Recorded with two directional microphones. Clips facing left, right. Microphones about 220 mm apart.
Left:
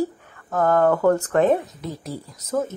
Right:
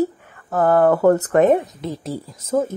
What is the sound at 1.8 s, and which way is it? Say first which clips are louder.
Speech: right 4 dB; 30° right (ahead or behind).